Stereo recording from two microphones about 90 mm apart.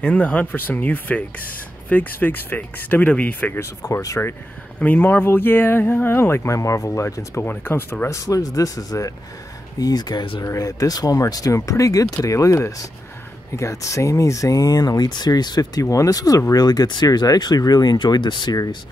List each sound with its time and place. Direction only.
0.0 s speech: 15° left (ahead or behind)
3.5 s speech: 30° left (ahead or behind)
4.7 s speech: 20° left (ahead or behind); by 7.4 s 35° left (ahead or behind)
7.4 s speech: 25° left (ahead or behind)
8.3 s speech: 40° left (ahead or behind); by 18.6 s 55° left (ahead or behind)